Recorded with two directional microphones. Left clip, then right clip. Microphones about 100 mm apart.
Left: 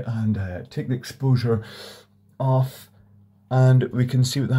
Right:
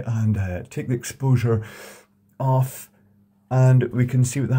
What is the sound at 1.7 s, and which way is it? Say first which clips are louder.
Speech: left 1 dB; centre (ahead or behind).